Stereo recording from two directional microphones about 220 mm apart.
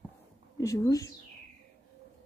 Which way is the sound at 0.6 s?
15° left (ahead or behind).